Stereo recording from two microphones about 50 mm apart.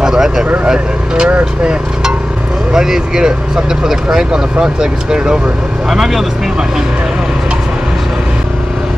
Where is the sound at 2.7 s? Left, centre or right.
Centre.